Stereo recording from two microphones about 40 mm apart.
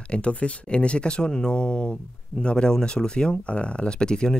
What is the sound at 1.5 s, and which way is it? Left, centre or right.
Speech, left.